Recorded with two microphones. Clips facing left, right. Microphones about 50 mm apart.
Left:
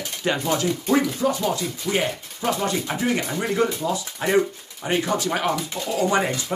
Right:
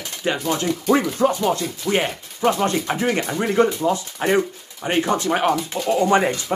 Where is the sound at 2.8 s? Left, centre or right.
Right.